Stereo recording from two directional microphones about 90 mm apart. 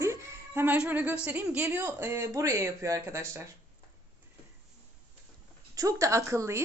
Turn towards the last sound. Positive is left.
turn(degrees=-30)  # may be behind; listen again after turning